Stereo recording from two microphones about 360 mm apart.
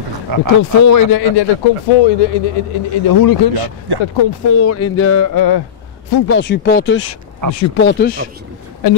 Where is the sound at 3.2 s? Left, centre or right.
Left.